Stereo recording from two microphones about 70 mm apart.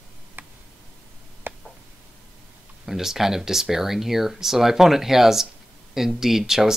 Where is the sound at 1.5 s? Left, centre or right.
Right.